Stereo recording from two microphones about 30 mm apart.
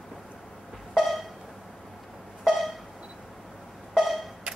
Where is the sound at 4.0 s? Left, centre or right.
Centre.